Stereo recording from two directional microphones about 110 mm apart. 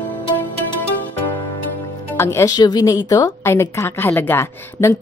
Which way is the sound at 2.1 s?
25° left (ahead or behind).